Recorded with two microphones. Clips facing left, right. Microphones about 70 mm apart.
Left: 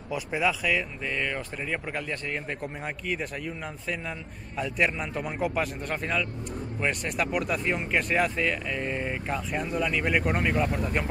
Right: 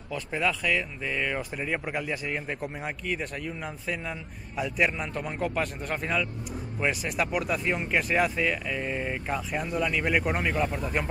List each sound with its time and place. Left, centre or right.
0.1 s speech: centre